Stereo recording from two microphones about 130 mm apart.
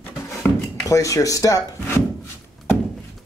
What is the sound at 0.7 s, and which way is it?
Speech, 25° left (ahead or behind).